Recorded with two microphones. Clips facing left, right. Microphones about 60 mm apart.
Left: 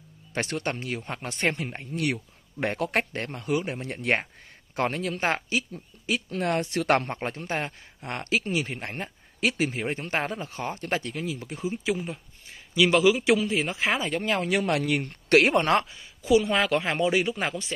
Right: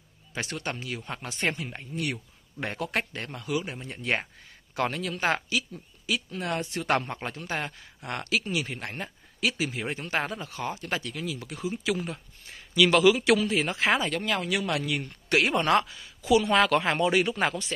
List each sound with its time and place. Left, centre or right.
0.3 s speech: left
3.8 s speech: left
4.7 s speech: left
6.3 s speech: left
7.2 s speech: left
15.0 s speech: left
15.7 s speech: left
16.5 s speech: centre